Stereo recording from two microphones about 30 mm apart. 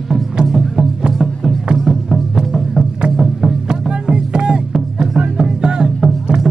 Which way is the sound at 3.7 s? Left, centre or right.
Right.